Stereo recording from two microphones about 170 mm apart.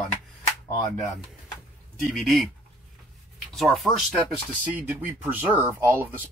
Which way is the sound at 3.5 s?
Centre (ahead or behind).